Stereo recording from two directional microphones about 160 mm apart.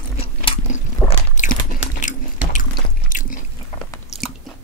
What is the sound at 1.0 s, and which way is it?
Biting, 20° left (ahead or behind).